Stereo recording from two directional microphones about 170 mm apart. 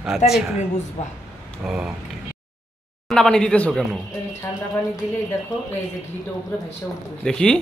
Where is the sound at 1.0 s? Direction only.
45° left (ahead or behind).